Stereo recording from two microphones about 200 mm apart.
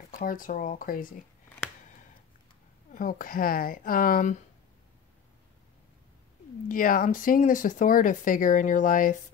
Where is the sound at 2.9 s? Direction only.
40° left (ahead or behind).